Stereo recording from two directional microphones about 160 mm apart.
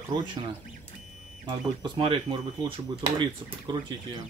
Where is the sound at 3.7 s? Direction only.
30° right (ahead or behind).